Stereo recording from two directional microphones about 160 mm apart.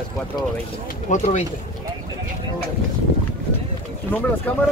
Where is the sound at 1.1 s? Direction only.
45° left (ahead or behind).